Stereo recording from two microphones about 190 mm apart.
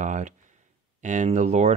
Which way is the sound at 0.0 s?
40° right (ahead or behind).